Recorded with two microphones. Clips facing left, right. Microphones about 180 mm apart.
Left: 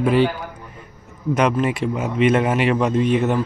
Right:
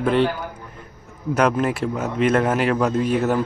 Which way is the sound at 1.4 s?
5° right (ahead or behind).